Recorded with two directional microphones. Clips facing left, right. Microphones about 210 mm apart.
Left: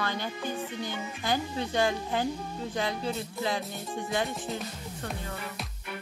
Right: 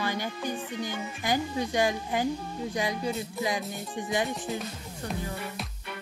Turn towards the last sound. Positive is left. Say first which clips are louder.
# right 1 dB
turn(degrees=-15)  # may be behind; listen again after turning